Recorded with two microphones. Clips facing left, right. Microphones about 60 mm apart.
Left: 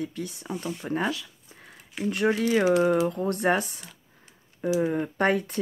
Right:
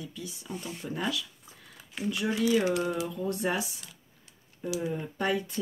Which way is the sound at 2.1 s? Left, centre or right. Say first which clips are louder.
Left 3 dB; left.